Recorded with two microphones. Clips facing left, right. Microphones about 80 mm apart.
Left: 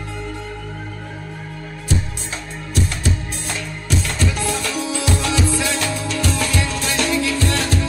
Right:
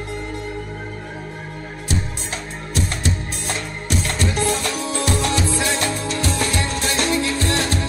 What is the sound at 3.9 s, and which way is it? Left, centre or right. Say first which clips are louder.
Music: left 1 dB; right.